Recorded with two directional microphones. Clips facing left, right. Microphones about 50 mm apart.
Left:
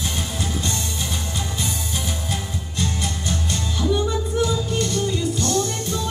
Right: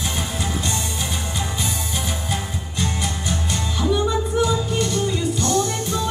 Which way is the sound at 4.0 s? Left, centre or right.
Right.